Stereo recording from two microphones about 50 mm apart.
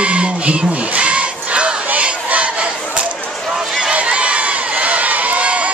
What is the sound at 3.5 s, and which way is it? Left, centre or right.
Crowd, centre.